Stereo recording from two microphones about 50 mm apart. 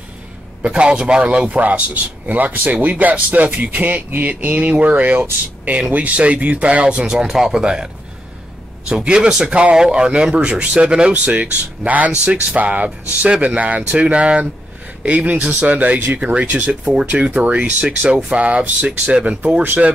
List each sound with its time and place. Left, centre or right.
0.6 s speech: right
11.3 s speech: right